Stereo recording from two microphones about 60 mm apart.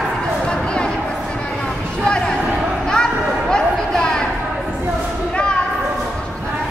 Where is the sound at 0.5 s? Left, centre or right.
Centre.